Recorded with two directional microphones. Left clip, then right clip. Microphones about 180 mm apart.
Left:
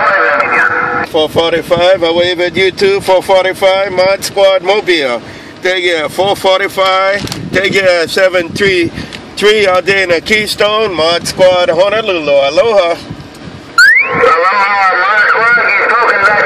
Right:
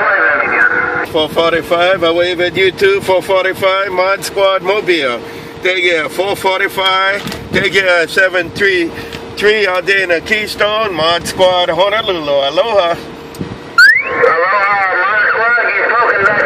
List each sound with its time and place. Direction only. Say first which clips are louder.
0.0 s radio: left 2 dB; 45° left (ahead or behind)
1.1 s speech: left 2 dB; 25° left (ahead or behind)
13.7 s vehicle: left 1 dB; 45° left (ahead or behind)